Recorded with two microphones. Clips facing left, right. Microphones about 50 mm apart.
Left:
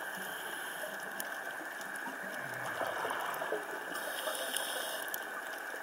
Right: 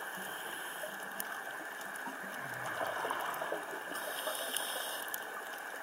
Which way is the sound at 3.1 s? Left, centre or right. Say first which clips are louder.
Even; left.